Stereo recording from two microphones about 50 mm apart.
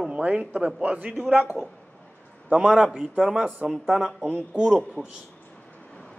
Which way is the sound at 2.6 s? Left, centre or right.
Centre.